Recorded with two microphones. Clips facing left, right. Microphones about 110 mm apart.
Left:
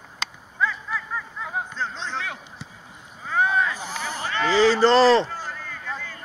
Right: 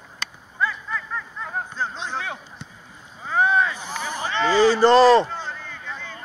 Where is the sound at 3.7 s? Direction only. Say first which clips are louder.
Right 1 dB; 15° right (ahead or behind).